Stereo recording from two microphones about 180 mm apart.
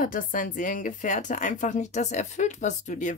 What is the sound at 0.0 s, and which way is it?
A woman's voice, 50° left (ahead or behind).